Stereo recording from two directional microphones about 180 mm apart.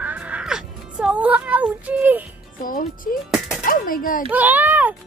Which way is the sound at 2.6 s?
50° left (ahead or behind).